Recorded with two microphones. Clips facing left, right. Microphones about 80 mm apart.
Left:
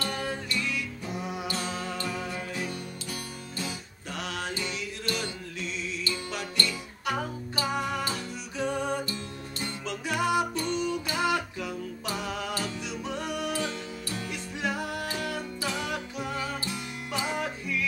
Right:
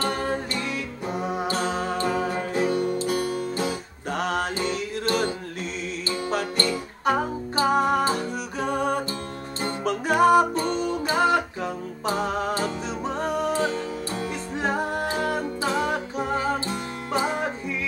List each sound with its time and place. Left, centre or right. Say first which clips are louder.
0.0 s music: right 7 dB; right